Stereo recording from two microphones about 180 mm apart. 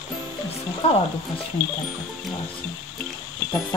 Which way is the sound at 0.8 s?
30° left (ahead or behind).